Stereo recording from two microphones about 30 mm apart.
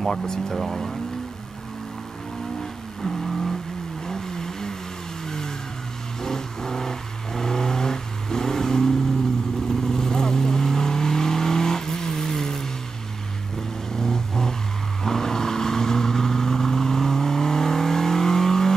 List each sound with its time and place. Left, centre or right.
0.0 s speech: centre
2.6 s vehicle: centre
6.2 s vehicle: centre
13.9 s vehicle: centre